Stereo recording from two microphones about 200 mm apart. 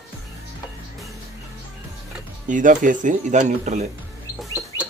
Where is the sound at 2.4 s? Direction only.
40° right (ahead or behind).